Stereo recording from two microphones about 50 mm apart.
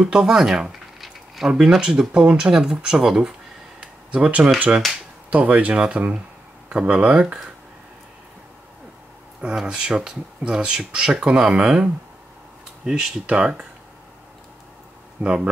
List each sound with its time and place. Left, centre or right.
0.0 s speech: centre
1.0 s a sound: centre
1.7 s speech: centre
3.8 s a sound: right
5.3 s speech: right
9.6 s speech: centre
13.3 s speech: right
15.2 s speech: right